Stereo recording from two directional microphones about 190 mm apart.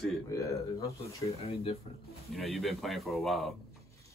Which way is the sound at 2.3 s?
Centre (ahead or behind).